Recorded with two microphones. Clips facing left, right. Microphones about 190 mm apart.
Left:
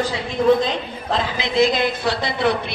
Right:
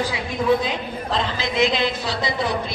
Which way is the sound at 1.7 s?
60° left (ahead or behind).